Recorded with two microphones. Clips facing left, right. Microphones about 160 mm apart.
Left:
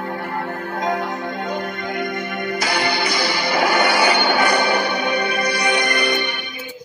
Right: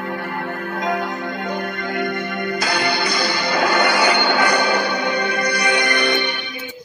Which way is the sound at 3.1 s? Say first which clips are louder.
Even; 20° left (ahead or behind).